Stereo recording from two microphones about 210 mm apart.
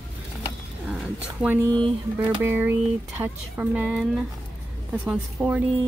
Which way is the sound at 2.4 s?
10° right (ahead or behind).